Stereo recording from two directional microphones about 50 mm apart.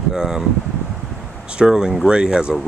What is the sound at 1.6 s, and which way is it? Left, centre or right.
Speech, centre.